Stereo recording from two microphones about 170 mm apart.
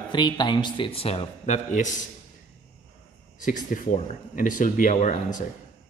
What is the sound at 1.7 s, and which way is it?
Speech, 50° left (ahead or behind).